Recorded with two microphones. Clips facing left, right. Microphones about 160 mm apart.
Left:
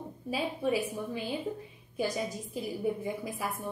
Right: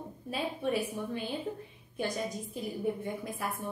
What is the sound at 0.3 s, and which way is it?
A woman's voice, 5° left (ahead or behind).